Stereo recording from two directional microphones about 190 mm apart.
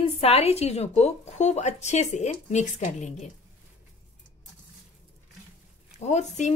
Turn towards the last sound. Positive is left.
turn(degrees=40)  # may be behind; listen again after turning